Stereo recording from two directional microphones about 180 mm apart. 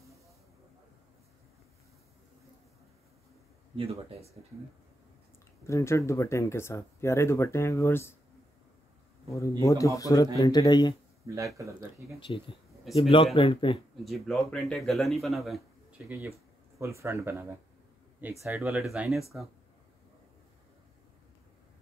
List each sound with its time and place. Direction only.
3.7 s speech: 35° right (ahead or behind)
5.7 s speech: 15° left (ahead or behind)
9.3 s speech: 15° left (ahead or behind)
11.5 s speech: 15° right (ahead or behind)
12.2 s speech: 30° left (ahead or behind)
14.0 s speech: centre (ahead or behind)
16.1 s speech: 15° right (ahead or behind)
18.6 s speech: centre (ahead or behind)